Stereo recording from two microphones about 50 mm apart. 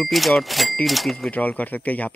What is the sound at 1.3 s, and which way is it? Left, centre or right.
Speech, left.